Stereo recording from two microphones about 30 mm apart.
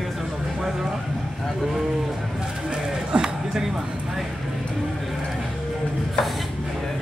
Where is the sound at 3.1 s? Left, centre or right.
Right.